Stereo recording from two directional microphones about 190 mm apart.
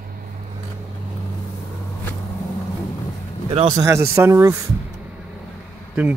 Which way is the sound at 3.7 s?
15° right (ahead or behind).